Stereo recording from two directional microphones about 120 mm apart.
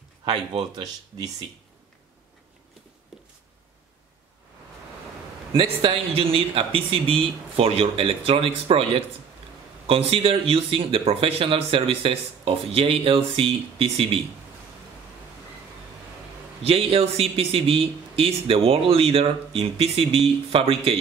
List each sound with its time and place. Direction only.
0.2 s speech: 50° right (ahead or behind)
5.5 s speech: 45° right (ahead or behind)
16.6 s speech: 55° right (ahead or behind)